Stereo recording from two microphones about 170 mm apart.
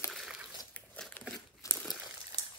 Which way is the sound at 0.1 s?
Centre (ahead or behind).